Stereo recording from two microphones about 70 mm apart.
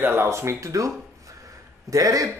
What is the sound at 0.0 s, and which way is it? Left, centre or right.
Speech, right.